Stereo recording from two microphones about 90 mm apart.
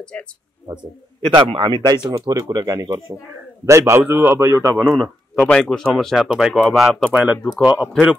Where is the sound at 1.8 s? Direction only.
45° right (ahead or behind).